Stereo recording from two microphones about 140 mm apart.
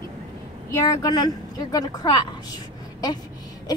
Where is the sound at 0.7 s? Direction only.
25° left (ahead or behind).